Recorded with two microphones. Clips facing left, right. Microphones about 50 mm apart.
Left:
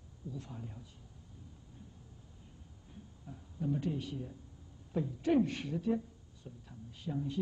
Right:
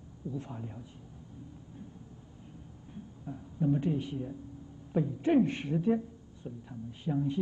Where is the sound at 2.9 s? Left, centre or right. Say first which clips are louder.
Right 9 dB; right.